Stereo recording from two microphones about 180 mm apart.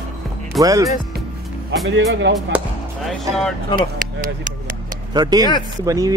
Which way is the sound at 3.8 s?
50° right (ahead or behind).